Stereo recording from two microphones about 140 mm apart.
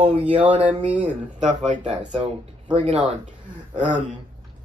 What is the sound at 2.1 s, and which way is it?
Speech, 40° right (ahead or behind).